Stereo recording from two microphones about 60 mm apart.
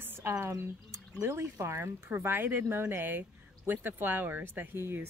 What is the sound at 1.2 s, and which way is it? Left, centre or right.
Speech, right.